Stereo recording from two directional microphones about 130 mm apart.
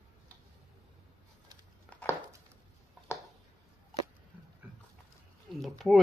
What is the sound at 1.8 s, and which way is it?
Chopping, 10° left (ahead or behind).